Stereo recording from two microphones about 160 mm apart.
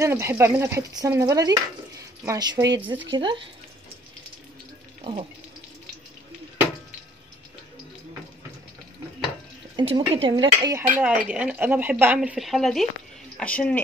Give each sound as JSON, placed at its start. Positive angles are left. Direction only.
{"t": 0.0, "sound": "speech", "side_deg": -15}
{"t": 9.8, "sound": "speech", "side_deg": -35}
{"t": 11.0, "sound": "speech", "side_deg": -10}